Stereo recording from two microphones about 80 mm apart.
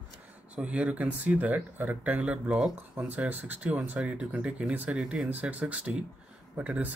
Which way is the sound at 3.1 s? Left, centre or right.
Right.